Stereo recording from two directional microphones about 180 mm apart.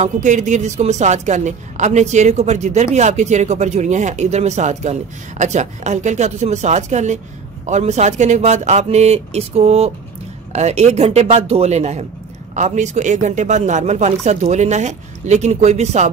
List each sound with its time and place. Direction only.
0.0 s a woman's voice: 40° right (ahead or behind)